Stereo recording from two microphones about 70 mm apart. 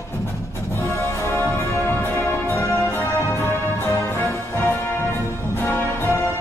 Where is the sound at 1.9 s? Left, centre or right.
Left.